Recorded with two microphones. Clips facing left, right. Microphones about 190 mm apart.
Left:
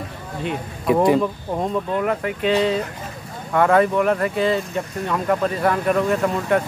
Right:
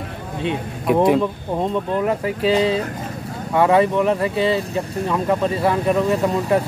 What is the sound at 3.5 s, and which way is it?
Speech, 5° right (ahead or behind).